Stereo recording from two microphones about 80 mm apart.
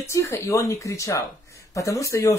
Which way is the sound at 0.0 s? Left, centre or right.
Left.